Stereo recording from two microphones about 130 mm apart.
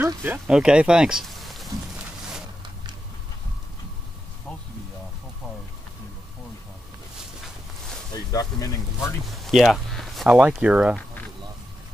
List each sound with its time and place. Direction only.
0.0 s speech: 15° right (ahead or behind)
0.5 s speech: 5° right (ahead or behind)
8.3 s speech: 30° left (ahead or behind)
9.2 s speech: centre (ahead or behind)